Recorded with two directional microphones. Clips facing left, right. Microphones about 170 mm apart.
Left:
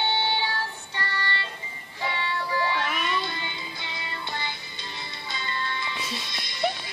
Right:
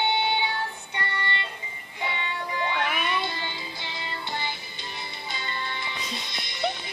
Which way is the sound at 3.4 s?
25° right (ahead or behind).